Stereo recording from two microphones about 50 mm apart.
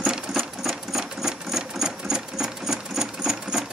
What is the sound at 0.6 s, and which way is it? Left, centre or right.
Sewing machine, centre.